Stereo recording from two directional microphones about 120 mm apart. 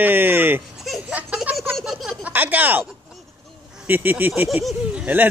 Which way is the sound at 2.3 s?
15° right (ahead or behind).